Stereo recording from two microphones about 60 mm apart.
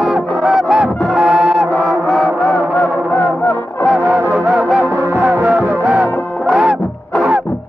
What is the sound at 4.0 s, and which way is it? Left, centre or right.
Music, right.